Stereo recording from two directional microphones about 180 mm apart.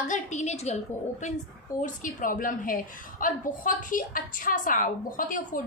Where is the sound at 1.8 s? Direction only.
45° left (ahead or behind).